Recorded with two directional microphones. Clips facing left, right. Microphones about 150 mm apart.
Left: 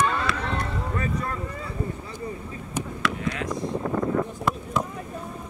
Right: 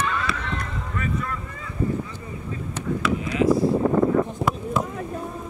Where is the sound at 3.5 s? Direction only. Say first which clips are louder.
Right 9 dB; 30° right (ahead or behind).